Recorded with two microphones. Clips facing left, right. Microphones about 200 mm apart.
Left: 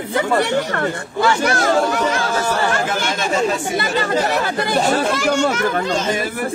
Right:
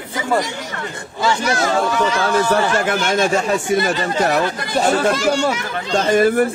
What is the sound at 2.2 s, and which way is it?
Speech, 60° right (ahead or behind).